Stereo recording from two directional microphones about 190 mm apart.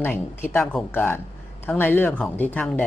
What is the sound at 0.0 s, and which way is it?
Speech, 10° left (ahead or behind).